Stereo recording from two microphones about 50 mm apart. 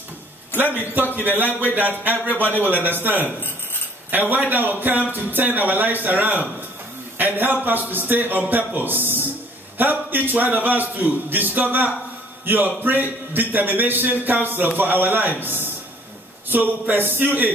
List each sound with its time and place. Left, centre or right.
1.0 s a man's voice: right
7.2 s a sound: right
7.6 s a man's voice: right